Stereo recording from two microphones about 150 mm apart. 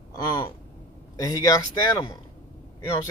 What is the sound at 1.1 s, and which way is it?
Speech, 20° left (ahead or behind).